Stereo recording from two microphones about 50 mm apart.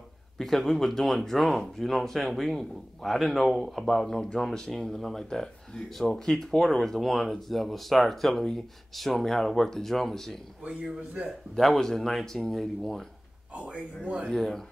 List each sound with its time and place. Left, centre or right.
0.4 s a man's voice: centre
4.2 s speech: centre
10.6 s a man's voice: right
11.5 s a man's voice: centre
14.2 s speech: centre